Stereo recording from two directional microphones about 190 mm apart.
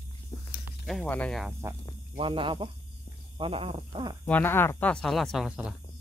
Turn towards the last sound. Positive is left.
turn(degrees=0)  # may be behind; listen again after turning